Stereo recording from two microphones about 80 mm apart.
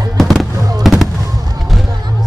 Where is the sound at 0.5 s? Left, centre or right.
Right.